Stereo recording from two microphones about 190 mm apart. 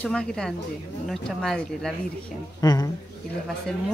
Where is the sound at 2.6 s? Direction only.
20° left (ahead or behind).